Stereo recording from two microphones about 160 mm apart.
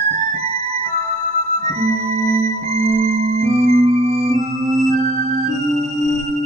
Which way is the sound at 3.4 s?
40° right (ahead or behind).